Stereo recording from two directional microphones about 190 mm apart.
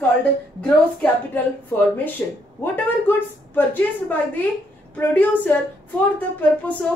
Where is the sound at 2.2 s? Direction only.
15° left (ahead or behind).